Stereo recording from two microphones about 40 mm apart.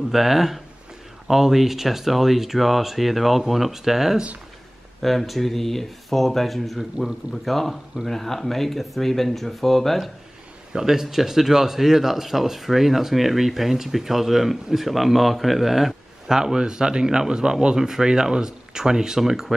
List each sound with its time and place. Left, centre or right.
0.1 s speech: centre
10.7 s speech: centre
16.3 s a man's voice: centre